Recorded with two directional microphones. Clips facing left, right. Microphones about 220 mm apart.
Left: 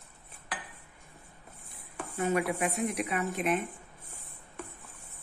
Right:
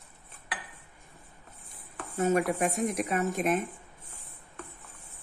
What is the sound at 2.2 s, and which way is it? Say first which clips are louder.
Speech: right 3 dB; 45° right (ahead or behind).